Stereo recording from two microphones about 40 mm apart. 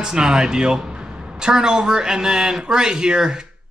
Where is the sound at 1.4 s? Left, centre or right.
Centre.